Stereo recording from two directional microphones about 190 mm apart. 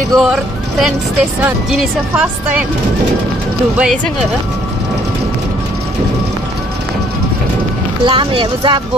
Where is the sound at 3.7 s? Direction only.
5° right (ahead or behind).